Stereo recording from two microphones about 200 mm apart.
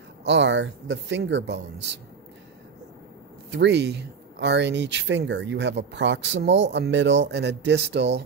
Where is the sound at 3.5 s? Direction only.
60° right (ahead or behind).